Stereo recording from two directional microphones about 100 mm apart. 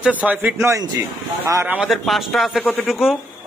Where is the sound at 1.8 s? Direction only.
Centre (ahead or behind).